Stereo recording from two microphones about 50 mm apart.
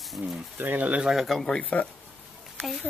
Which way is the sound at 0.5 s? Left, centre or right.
Right.